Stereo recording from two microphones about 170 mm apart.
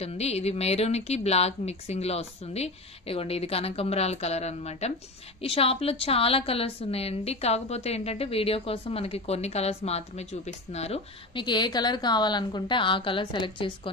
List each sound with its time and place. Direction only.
0.0 s a woman's voice: 35° left (ahead or behind)